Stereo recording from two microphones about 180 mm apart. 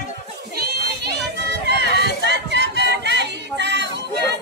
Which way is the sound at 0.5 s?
65° right (ahead or behind).